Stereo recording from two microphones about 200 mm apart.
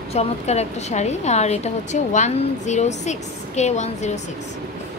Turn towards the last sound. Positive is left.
turn(degrees=35)  # may be behind; listen again after turning